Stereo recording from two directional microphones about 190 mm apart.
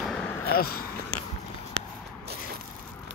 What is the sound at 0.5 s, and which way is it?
Speech, 50° left (ahead or behind).